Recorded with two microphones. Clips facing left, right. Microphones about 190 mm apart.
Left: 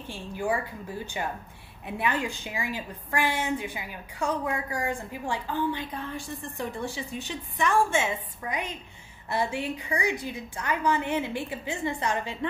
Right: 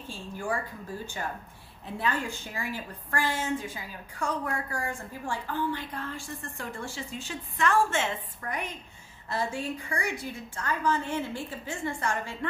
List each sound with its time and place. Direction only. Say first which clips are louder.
0.1 s a woman's voice: left 4 dB; 15° left (ahead or behind)